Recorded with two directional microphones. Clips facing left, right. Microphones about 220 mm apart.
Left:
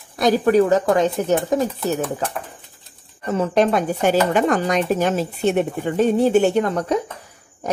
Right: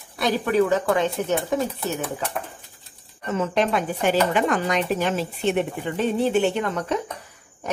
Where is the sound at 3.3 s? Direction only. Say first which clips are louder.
Left 5 dB; 40° left (ahead or behind).